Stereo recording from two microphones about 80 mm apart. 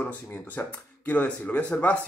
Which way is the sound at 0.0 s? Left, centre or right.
Left.